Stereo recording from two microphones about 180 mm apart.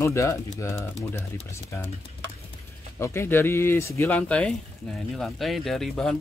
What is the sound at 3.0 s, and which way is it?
Speech, 15° left (ahead or behind).